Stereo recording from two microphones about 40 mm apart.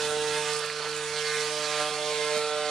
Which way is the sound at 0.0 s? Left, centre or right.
Centre.